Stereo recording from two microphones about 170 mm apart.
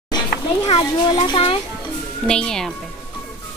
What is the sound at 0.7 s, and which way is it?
Speech, 30° left (ahead or behind).